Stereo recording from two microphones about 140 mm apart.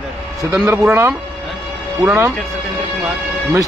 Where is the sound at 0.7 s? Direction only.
15° right (ahead or behind).